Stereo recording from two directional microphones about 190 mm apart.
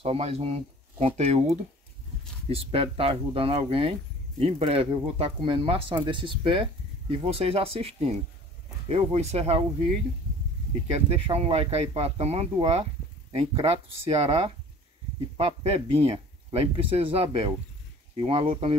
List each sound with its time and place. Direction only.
0.0 s speech: 30° right (ahead or behind)
11.1 s speech: 30° right (ahead or behind)